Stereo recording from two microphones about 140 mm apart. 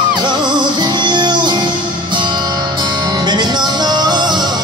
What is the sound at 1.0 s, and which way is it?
Music, 30° right (ahead or behind).